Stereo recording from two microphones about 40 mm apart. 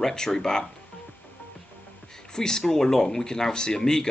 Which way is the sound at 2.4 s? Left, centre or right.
Centre.